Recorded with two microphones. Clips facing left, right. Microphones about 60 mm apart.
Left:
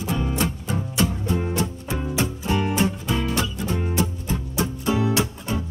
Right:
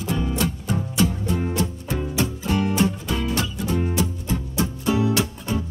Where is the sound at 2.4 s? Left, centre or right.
Left.